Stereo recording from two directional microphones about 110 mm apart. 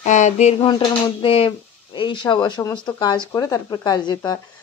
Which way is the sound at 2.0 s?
45° left (ahead or behind).